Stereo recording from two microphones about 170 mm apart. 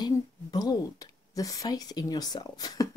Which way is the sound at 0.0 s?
20° left (ahead or behind).